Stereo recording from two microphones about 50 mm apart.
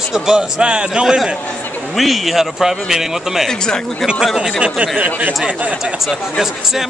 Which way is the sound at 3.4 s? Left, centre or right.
Centre.